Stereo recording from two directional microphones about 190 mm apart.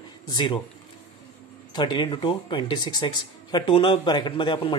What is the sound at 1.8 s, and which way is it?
Speech, 25° left (ahead or behind).